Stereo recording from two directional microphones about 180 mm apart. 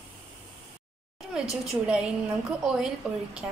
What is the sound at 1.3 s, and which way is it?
A woman's voice, centre (ahead or behind).